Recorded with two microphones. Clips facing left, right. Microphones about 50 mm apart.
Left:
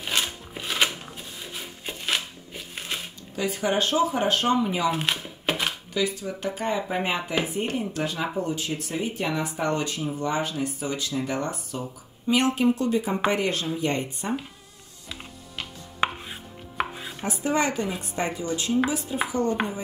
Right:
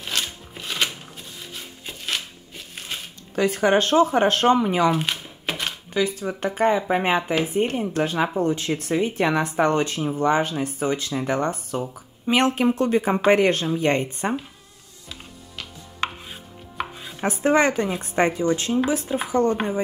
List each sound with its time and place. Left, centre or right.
0.0 s a sound: centre
1.4 s crumpling: centre
3.3 s speech: right
4.9 s a sound: centre
5.9 s speech: right
15.0 s chopping: centre
17.2 s speech: right